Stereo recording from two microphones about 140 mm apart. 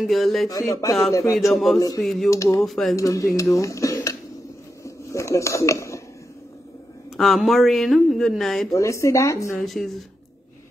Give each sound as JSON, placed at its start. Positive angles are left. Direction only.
{"t": 0.0, "sound": "speech", "side_deg": 0}
{"t": 0.5, "sound": "speech", "side_deg": 25}
{"t": 1.5, "sound": "speech", "side_deg": 0}
{"t": 2.2, "sound": "speech", "side_deg": 20}
{"t": 2.6, "sound": "speech", "side_deg": 0}
{"t": 3.0, "sound": "speech", "side_deg": 25}
{"t": 4.8, "sound": "a sound", "side_deg": 20}
{"t": 7.2, "sound": "speech", "side_deg": 0}
{"t": 8.7, "sound": "speech", "side_deg": 20}
{"t": 9.7, "sound": "speech", "side_deg": 0}